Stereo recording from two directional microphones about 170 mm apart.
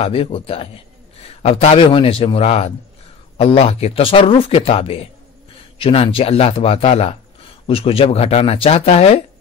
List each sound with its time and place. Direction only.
0.0 s speech: 35° left (ahead or behind)